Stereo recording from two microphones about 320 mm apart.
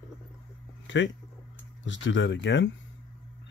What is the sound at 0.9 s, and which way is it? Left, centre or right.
Speech, left.